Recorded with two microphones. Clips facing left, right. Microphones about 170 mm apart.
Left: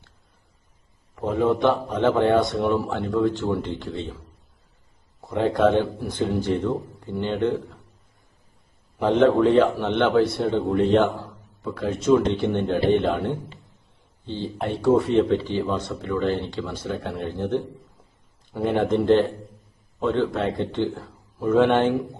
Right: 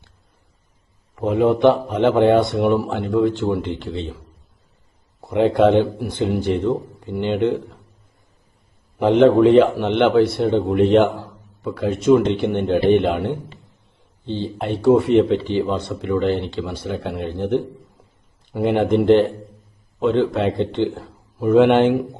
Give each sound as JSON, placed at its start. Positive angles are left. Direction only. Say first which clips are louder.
{"t": 1.2, "sound": "a man's voice", "louder": "right 5 dB", "side_deg": -15}
{"t": 5.3, "sound": "speech", "louder": "right 5 dB", "side_deg": -20}
{"t": 9.0, "sound": "a man's voice", "louder": "right 5 dB", "side_deg": -15}
{"t": 10.2, "sound": "a man's voice", "louder": "right 4 dB", "side_deg": -65}
{"t": 10.5, "sound": "speech", "louder": "right 4 dB", "side_deg": -20}
{"t": 12.0, "sound": "a man's voice", "louder": "right 4 dB", "side_deg": -15}
{"t": 14.2, "sound": "speech", "louder": "right 5 dB", "side_deg": -70}
{"t": 14.9, "sound": "a man's voice", "louder": "right 4 dB", "side_deg": -15}
{"t": 18.9, "sound": "a man's voice", "louder": "right 5 dB", "side_deg": -65}
{"t": 20.0, "sound": "a man's voice", "louder": "right 5 dB", "side_deg": -20}